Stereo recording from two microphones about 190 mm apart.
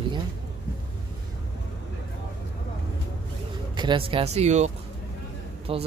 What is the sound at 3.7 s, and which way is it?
A man's voice, 25° right (ahead or behind).